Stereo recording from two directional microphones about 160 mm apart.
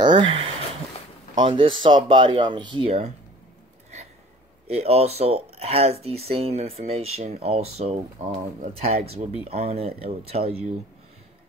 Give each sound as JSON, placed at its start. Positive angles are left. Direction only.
{"t": 0.0, "sound": "a sound", "side_deg": -30}
{"t": 1.3, "sound": "speech", "side_deg": -30}
{"t": 4.6, "sound": "speech", "side_deg": -40}